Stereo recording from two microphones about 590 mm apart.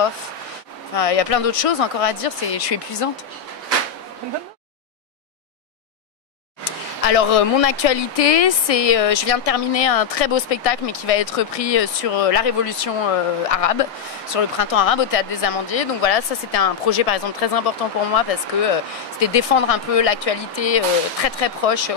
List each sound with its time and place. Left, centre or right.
0.9 s speech: left
6.6 s speech: left